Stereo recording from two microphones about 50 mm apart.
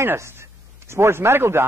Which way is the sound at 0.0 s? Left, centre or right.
Right.